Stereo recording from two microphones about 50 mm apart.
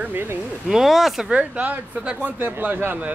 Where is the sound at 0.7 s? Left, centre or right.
Centre.